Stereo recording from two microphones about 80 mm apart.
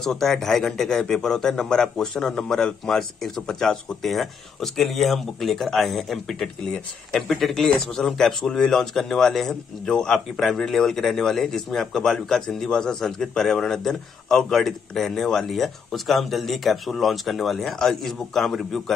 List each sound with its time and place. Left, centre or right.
0.0 s speech: centre